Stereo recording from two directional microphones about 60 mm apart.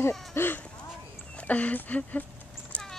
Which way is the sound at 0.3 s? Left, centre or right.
Left.